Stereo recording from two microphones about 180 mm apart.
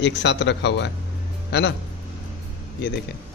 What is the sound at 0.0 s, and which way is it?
Speech, 75° left (ahead or behind).